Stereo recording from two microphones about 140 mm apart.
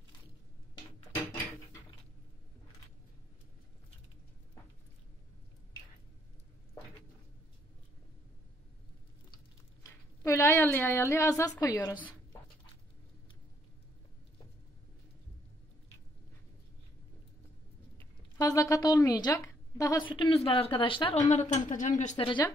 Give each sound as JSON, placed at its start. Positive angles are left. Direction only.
{"t": 9.8, "sound": "a woman's voice", "side_deg": 20}
{"t": 18.4, "sound": "a sound", "side_deg": 25}
{"t": 20.0, "sound": "speech", "side_deg": 35}
{"t": 21.3, "sound": "speech", "side_deg": 60}
{"t": 22.1, "sound": "speech", "side_deg": 35}